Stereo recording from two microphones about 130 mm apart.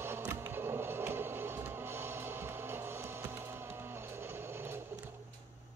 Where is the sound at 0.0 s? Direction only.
20° right (ahead or behind).